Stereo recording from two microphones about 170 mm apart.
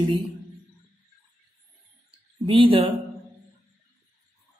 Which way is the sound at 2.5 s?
30° right (ahead or behind).